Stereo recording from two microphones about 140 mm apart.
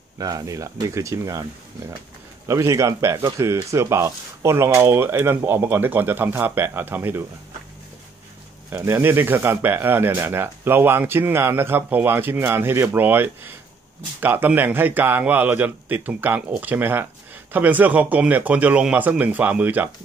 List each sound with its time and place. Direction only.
0.2 s speech: 25° right (ahead or behind)
2.4 s speech: 20° right (ahead or behind)
8.7 s speech: 15° right (ahead or behind)